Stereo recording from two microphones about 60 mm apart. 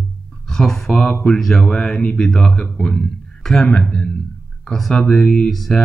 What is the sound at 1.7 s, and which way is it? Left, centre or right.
Speech, centre.